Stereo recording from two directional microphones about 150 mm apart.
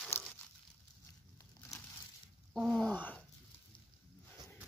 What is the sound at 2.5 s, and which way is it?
Speech, centre (ahead or behind).